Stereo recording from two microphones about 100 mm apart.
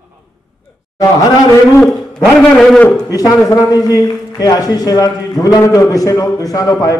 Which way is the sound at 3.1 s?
40° left (ahead or behind).